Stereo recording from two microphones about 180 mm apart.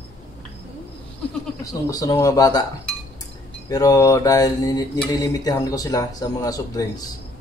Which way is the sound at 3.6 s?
20° left (ahead or behind).